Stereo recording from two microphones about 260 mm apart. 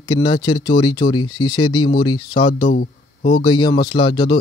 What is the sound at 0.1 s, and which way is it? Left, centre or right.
Speech, centre.